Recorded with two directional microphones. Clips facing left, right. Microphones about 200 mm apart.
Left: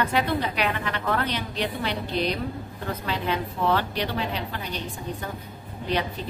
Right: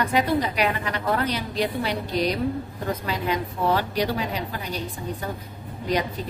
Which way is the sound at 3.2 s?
10° right (ahead or behind).